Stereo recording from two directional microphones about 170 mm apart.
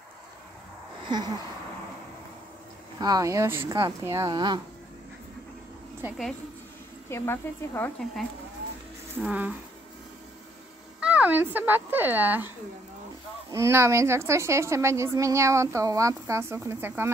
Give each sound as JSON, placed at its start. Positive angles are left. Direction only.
{"t": 1.0, "sound": "a sound", "side_deg": -25}
{"t": 3.0, "sound": "speech", "side_deg": -20}
{"t": 6.0, "sound": "speech", "side_deg": 0}
{"t": 7.1, "sound": "speech", "side_deg": 15}
{"t": 8.0, "sound": "speech", "side_deg": 0}
{"t": 11.0, "sound": "a sound", "side_deg": -5}
{"t": 11.5, "sound": "a woman's voice", "side_deg": -10}